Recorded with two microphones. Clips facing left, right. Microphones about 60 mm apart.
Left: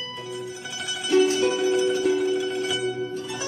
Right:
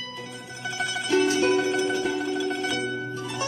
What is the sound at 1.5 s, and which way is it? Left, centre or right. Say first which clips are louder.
Music: left 1 dB; right.